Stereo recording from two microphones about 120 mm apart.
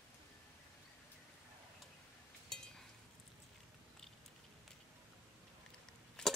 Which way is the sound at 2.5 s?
5° left (ahead or behind).